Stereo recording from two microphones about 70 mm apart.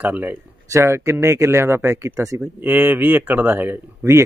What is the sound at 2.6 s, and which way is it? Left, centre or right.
Speech, centre.